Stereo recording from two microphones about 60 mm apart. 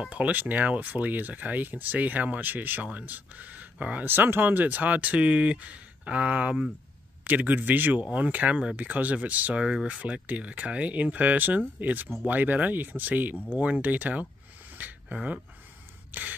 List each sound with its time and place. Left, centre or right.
0.0 s speech: right
14.8 s a sound: right
16.1 s gasp: right